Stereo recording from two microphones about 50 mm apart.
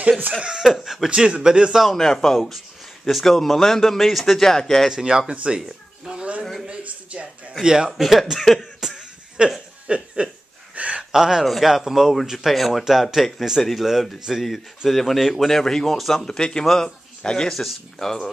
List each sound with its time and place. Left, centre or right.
0.4 s speech: centre
1.1 s speech: centre
2.0 s speech: centre
4.8 s speech: centre
6.1 s a sound: right
7.6 s speech: centre
9.4 s speech: centre
9.8 s a sound: right
11.1 s speech: centre
17.5 s speech: centre